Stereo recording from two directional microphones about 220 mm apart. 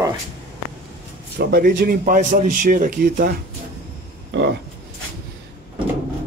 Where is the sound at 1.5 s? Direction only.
40° right (ahead or behind).